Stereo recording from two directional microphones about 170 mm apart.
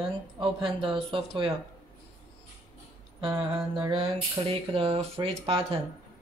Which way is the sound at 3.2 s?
25° right (ahead or behind).